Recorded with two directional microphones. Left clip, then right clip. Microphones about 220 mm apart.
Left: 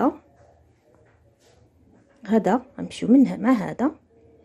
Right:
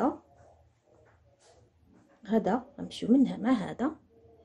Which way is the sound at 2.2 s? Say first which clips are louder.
Left 7 dB; 30° left (ahead or behind).